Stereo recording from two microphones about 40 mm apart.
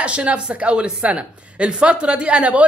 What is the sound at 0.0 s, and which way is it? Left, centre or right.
A woman's voice, right.